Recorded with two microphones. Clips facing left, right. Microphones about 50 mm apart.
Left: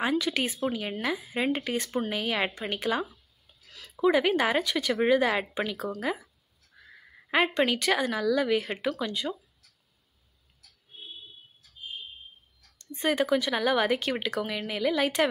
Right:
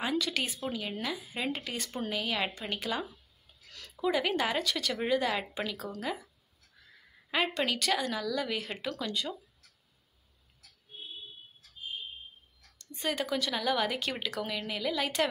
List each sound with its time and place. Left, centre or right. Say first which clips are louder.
0.2 s speech: left 5 dB; centre
3.6 s a sound: left 1 dB; centre
4.0 s speech: left 6 dB; centre
7.2 s speech: left 6 dB; left
12.7 s a sound: left 6 dB; left
13.2 s speech: left 7 dB; left